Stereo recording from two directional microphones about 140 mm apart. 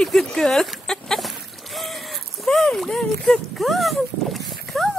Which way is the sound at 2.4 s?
5° left (ahead or behind).